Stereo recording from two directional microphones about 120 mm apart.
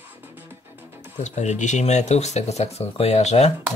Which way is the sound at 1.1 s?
80° left.